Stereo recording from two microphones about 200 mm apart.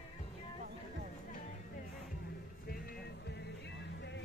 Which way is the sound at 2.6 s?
55° left (ahead or behind).